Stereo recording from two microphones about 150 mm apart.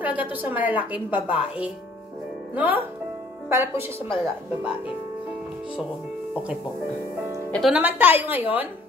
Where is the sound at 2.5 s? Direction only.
10° right (ahead or behind).